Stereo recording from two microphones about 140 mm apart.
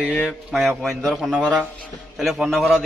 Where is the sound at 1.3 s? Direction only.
10° right (ahead or behind).